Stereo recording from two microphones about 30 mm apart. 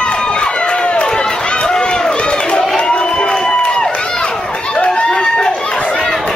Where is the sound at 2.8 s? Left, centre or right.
Left.